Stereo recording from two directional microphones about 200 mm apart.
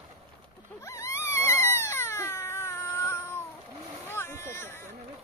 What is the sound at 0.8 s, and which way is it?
Wail, 15° left (ahead or behind).